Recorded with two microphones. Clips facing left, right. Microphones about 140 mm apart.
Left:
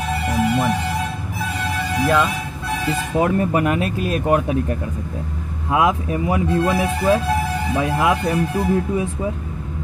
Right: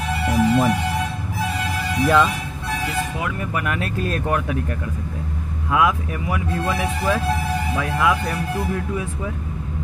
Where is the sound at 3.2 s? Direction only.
35° left (ahead or behind).